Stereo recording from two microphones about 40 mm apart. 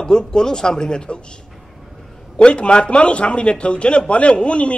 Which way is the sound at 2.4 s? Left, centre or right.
Left.